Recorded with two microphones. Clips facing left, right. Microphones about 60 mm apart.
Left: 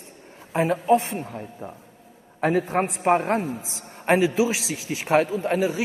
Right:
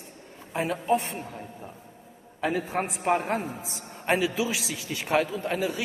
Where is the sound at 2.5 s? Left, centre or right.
Left.